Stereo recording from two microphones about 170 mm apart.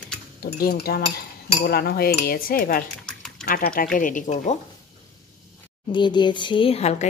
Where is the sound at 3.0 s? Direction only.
5° left (ahead or behind).